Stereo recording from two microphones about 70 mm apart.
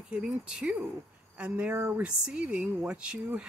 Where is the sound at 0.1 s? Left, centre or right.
Centre.